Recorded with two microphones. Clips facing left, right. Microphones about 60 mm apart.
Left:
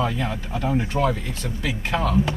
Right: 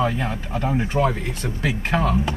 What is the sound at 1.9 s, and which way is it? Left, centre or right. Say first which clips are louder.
Speech: even; right.